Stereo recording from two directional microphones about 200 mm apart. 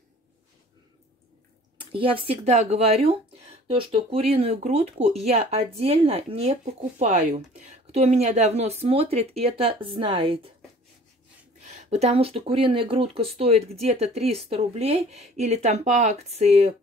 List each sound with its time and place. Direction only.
1.9 s speech: 25° right (ahead or behind)
11.6 s speech: 35° right (ahead or behind)